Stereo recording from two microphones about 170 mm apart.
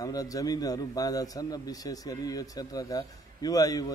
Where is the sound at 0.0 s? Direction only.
20° left (ahead or behind).